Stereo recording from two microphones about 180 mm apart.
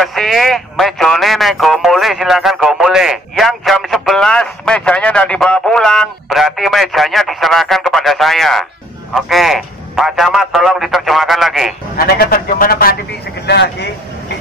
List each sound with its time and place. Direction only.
0.0 s speech: centre (ahead or behind)
12.2 s speech: 55° left (ahead or behind)
13.5 s speech: 70° left (ahead or behind)